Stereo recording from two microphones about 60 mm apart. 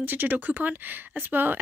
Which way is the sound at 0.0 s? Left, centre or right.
Right.